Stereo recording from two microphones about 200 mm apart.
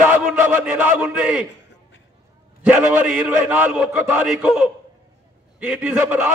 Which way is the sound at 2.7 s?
5° right (ahead or behind).